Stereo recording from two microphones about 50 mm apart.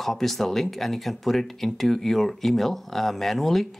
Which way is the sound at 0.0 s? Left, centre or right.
Centre.